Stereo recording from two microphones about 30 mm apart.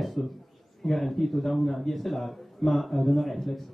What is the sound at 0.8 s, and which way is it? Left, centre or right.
Speech, centre.